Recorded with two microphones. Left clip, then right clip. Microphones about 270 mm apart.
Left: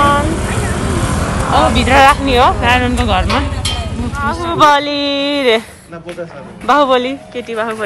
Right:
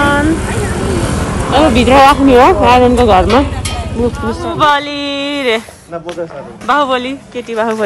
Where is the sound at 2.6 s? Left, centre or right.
Centre.